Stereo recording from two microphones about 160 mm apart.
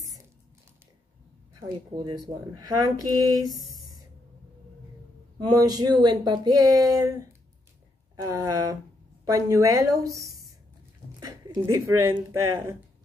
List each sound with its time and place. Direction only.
2.0 s speech: 20° right (ahead or behind)
5.4 s speech: 25° right (ahead or behind)
10.1 s speech: 70° left (ahead or behind)
11.1 s speech: 20° right (ahead or behind)